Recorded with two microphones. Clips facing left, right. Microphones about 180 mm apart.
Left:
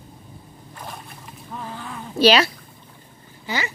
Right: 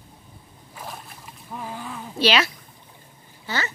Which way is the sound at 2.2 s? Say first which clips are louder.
Left 5 dB; 40° left (ahead or behind).